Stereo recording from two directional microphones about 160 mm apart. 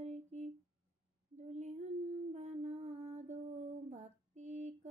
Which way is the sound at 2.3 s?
45° right (ahead or behind).